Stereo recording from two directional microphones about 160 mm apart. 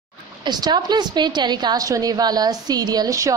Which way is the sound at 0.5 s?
25° right (ahead or behind).